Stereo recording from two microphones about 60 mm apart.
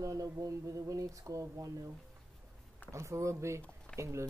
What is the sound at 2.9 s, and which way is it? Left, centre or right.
Speech, right.